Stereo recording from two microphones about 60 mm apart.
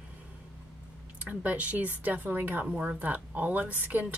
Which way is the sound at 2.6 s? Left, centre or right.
Centre.